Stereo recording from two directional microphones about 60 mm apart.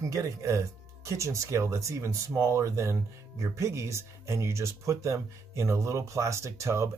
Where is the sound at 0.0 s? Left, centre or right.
Right.